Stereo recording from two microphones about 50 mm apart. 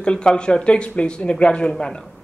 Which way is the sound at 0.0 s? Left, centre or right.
Centre.